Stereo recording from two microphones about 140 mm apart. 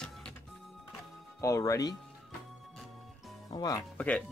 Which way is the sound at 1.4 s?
20° left (ahead or behind).